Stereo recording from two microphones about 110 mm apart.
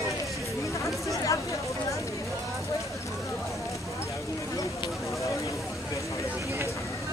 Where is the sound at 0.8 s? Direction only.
30° left (ahead or behind).